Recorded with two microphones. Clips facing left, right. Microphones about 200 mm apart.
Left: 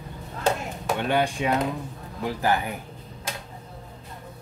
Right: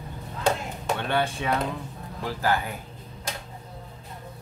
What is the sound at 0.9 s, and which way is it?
Speech, 15° left (ahead or behind).